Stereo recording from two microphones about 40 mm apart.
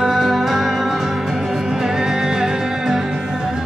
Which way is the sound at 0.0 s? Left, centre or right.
Centre.